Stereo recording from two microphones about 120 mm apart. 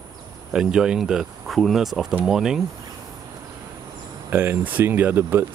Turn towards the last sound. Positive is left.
turn(degrees=-15)  # may be behind; listen again after turning